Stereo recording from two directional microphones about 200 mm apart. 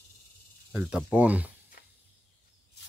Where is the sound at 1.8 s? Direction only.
50° left (ahead or behind).